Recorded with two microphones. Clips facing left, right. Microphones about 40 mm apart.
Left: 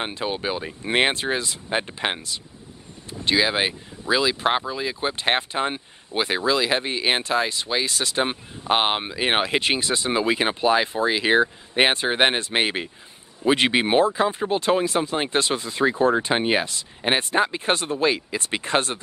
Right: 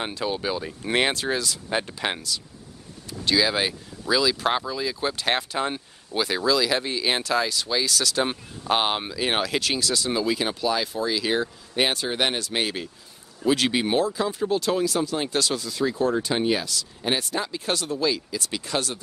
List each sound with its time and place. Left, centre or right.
0.0 s speech: left